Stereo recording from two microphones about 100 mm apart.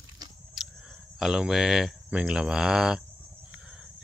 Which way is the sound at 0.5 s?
Centre (ahead or behind).